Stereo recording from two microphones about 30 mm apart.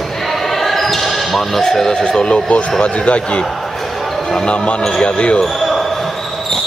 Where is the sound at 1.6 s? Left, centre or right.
Centre.